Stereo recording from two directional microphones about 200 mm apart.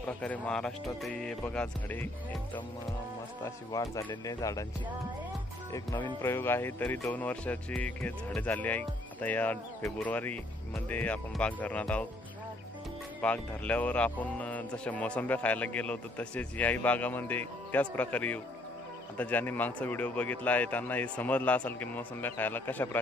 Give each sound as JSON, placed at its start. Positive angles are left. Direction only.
{"t": 0.0, "sound": "speech", "side_deg": 5}
{"t": 3.4, "sound": "speech", "side_deg": 15}
{"t": 5.7, "sound": "speech", "side_deg": 15}
{"t": 13.2, "sound": "speech", "side_deg": 5}